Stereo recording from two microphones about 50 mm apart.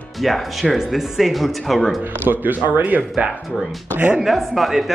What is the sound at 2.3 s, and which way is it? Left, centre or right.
Speech, right.